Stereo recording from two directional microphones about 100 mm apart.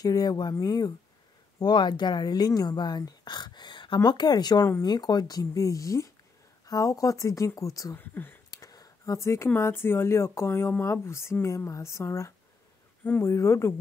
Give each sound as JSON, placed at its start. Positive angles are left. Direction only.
{"t": 0.0, "sound": "speech", "side_deg": 40}
{"t": 7.9, "sound": "speech", "side_deg": 20}
{"t": 8.5, "sound": "a sound", "side_deg": 40}
{"t": 9.5, "sound": "speech", "side_deg": 25}